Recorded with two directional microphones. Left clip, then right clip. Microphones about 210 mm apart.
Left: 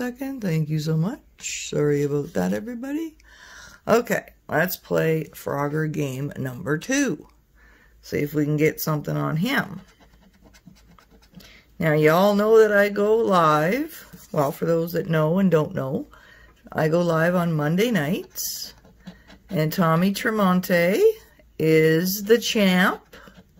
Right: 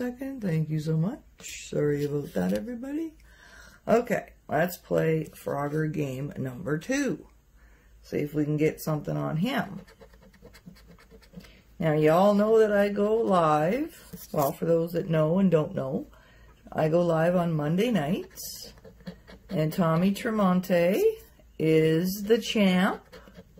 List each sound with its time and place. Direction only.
0.0 s speech: 40° left (ahead or behind)
8.1 s speech: 45° left (ahead or behind)
11.8 s speech: 50° left (ahead or behind)